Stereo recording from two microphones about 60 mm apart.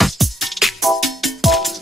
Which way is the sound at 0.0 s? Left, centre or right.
Centre.